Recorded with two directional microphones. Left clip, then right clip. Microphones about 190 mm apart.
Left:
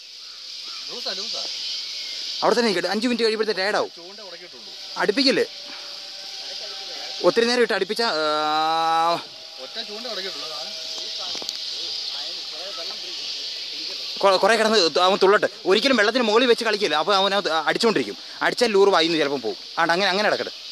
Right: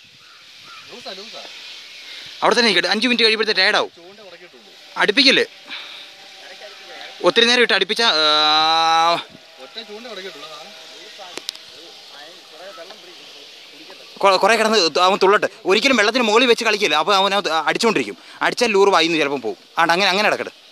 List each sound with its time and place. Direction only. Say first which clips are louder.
2.4 s speech: right 5 dB; 15° right (ahead or behind)
4.9 s speech: right 6 dB; 15° right (ahead or behind)
7.2 s speech: right 4 dB; 15° right (ahead or behind)
14.1 s a man's voice: right 3 dB; 25° right (ahead or behind)